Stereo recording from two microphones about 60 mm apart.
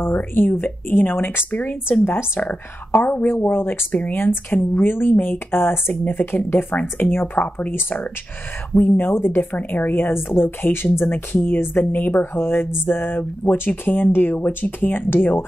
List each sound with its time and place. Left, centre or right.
0.0 s a woman's voice: left
8.7 s a woman's voice: left